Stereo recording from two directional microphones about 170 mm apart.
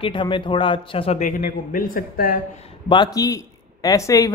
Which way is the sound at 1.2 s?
55° left (ahead or behind).